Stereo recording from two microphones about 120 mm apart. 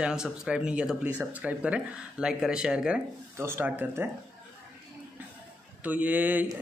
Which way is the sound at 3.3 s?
20° right (ahead or behind).